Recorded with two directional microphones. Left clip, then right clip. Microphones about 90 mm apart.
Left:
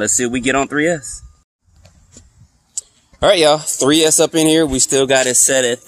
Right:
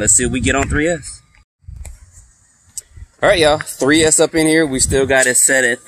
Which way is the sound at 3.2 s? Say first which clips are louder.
Left 1 dB; 30° left (ahead or behind).